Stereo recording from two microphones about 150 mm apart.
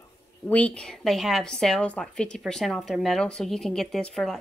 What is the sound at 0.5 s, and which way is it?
A woman's voice, 10° left (ahead or behind).